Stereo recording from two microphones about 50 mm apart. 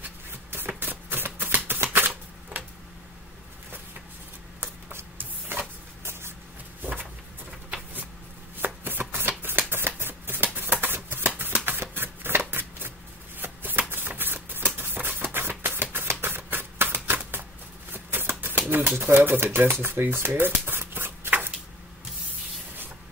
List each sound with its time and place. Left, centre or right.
0.3 s shuffling cards: right
1.7 s typewriter: right
5.1 s printer: right
6.8 s a sound: right
8.5 s chopping: right
9.4 s shuffling cards: right
10.8 s a sound: right
13.4 s shuffling cards: right
18.9 s typewriter: right